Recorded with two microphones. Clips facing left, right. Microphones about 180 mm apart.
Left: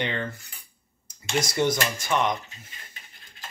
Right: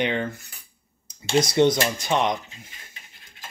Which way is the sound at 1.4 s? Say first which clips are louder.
Right 6 dB; 20° right (ahead or behind).